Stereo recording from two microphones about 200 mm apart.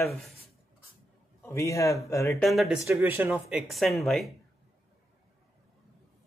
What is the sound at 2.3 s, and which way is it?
Speech, centre (ahead or behind).